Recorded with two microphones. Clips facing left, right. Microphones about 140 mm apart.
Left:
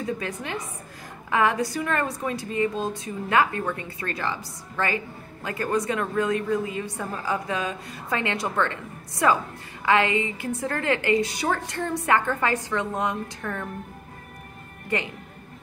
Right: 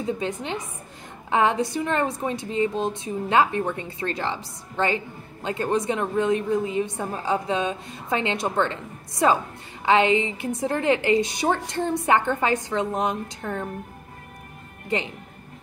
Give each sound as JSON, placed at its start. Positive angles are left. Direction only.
{"t": 0.0, "sound": "a woman's voice", "side_deg": -25}